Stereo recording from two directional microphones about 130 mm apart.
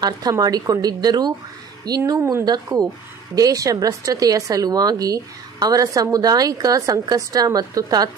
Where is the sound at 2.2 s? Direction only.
20° right (ahead or behind).